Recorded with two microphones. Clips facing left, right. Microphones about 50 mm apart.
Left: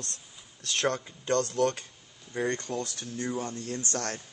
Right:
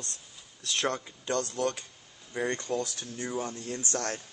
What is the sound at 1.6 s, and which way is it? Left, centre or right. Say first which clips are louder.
Speech: left 4 dB; left.